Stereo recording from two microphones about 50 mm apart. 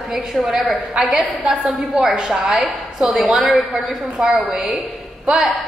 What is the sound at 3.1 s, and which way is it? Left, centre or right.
A woman's voice, centre.